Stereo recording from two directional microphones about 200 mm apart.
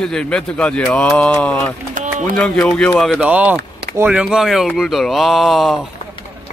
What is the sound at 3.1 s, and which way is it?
A man's voice, 5° right (ahead or behind).